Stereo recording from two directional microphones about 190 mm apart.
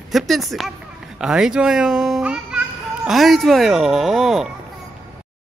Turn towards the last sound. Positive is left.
turn(degrees=0)  # may be behind; listen again after turning